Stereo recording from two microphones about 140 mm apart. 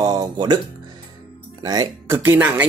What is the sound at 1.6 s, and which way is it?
Speech, 25° right (ahead or behind).